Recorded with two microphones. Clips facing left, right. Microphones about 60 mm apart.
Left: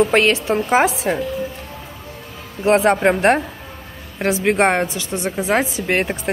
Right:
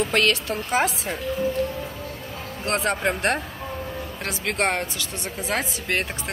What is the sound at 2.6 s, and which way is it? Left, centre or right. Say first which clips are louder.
Speech: left 10 dB; left.